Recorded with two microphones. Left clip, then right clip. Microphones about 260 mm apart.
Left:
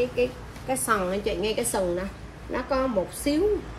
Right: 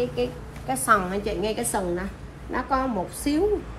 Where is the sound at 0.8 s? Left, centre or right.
Centre.